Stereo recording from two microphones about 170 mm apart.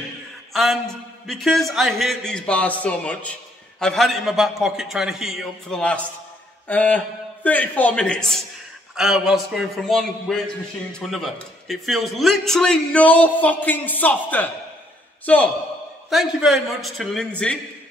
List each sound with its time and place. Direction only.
0.5 s a man's voice: centre (ahead or behind)
16.1 s a man's voice: centre (ahead or behind)